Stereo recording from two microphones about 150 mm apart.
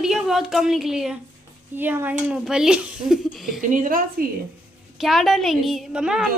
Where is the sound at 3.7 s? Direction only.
65° right (ahead or behind).